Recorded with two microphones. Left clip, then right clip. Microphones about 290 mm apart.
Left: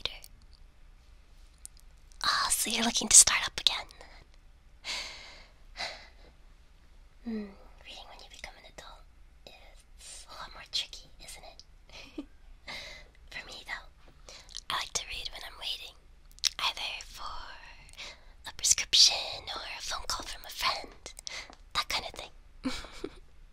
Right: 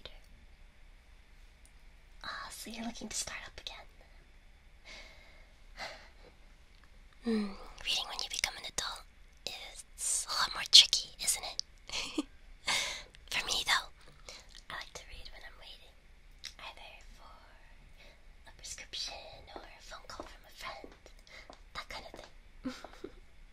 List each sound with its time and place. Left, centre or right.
0.0 s whispering: left
2.1 s whispering: left
4.8 s breathing: left
5.8 s gasp: centre
7.2 s whispering: right
14.3 s whispering: centre
14.7 s whispering: centre